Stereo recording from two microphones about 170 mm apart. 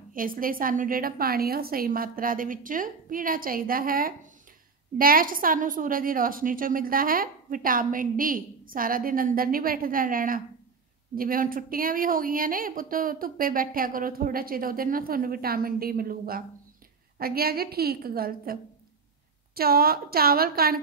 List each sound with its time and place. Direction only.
0.1 s a woman's voice: 55° right (ahead or behind)